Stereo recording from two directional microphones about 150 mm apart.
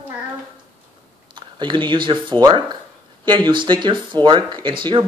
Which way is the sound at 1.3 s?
30° right (ahead or behind).